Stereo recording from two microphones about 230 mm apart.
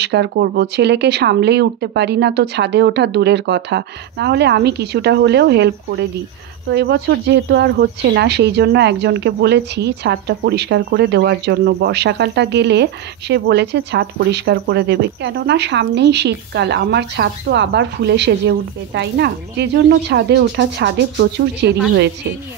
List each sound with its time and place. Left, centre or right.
0.0 s speech: right